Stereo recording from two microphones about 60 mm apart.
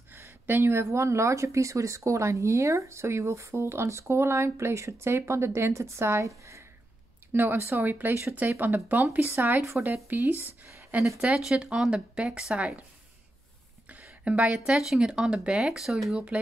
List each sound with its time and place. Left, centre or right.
0.1 s a sound: right
0.8 s speech: right
7.5 s speech: right
11.1 s a woman's voice: centre
13.8 s a sound: right
14.7 s speech: centre